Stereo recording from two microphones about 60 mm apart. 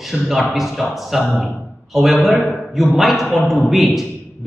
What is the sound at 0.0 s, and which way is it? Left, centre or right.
A man's voice, centre.